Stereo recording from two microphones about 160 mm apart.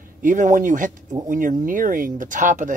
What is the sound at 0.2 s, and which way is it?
Speech, 55° right (ahead or behind).